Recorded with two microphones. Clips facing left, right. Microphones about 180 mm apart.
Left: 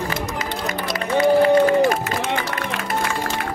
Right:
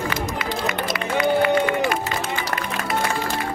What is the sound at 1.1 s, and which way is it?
Run, 35° left (ahead or behind).